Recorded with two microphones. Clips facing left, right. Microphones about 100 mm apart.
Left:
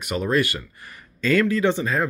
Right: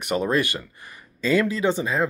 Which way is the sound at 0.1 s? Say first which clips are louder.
Even; 25° right (ahead or behind).